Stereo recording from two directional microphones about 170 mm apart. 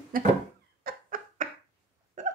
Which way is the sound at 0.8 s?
55° right (ahead or behind).